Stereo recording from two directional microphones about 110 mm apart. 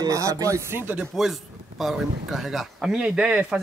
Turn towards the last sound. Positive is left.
turn(degrees=-10)  # may be behind; listen again after turning